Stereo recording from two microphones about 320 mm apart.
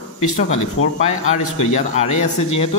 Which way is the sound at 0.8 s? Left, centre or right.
Left.